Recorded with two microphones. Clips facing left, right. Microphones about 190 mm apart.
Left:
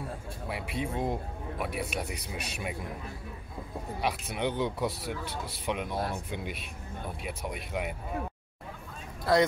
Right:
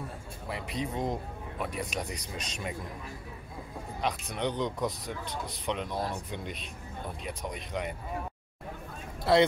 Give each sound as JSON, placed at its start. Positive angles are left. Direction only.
{"t": 0.5, "sound": "speech", "side_deg": 5}
{"t": 4.0, "sound": "speech", "side_deg": 5}
{"t": 9.2, "sound": "speech", "side_deg": -25}